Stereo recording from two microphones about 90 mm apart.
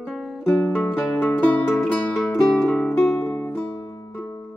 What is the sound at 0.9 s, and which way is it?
Music, 5° left (ahead or behind).